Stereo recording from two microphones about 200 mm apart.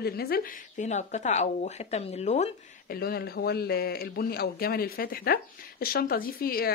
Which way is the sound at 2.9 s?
50° left (ahead or behind).